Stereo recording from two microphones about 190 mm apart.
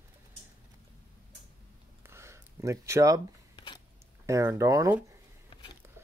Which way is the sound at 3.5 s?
25° left (ahead or behind).